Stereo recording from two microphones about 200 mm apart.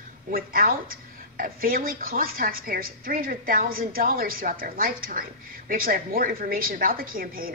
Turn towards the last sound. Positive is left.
turn(degrees=-45)  # may be behind; listen again after turning